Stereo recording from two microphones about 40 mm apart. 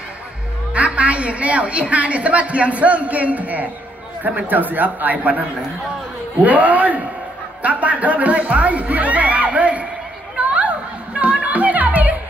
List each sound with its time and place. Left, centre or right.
0.7 s a woman's voice: right
6.4 s a man's voice: right
10.3 s music: right